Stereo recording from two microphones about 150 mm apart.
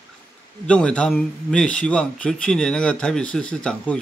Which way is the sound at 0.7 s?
5° left (ahead or behind).